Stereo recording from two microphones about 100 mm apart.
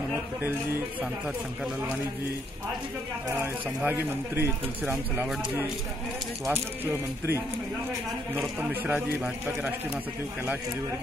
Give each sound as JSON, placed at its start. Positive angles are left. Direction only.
{"t": 0.1, "sound": "speech", "side_deg": -20}
{"t": 3.8, "sound": "speech", "side_deg": -15}
{"t": 8.5, "sound": "speech", "side_deg": -15}